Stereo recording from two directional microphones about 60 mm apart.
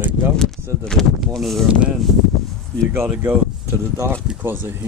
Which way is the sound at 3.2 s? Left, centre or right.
Right.